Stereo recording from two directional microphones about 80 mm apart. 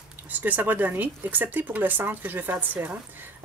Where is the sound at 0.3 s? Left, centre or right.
Right.